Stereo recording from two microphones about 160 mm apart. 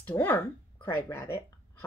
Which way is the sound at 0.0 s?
10° left (ahead or behind).